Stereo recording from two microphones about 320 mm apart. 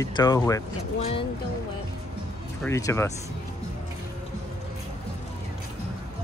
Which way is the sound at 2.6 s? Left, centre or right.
Centre.